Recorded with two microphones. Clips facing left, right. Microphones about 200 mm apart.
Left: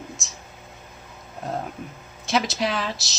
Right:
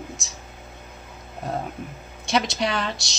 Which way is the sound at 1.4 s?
Centre (ahead or behind).